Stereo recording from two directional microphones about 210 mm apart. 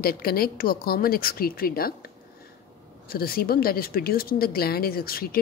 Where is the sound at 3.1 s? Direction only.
45° left (ahead or behind).